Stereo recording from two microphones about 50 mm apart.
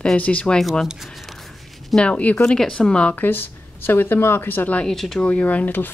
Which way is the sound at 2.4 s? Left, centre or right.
Centre.